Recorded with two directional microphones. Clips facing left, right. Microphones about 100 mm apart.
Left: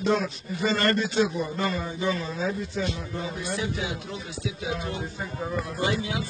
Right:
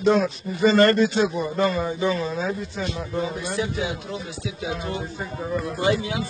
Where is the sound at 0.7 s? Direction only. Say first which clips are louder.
Right 8 dB; 70° right (ahead or behind).